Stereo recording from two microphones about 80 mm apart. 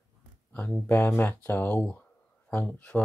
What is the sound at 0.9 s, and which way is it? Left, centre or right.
Speech, left.